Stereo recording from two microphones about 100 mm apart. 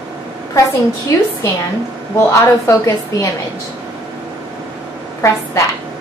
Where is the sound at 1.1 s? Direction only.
35° left (ahead or behind).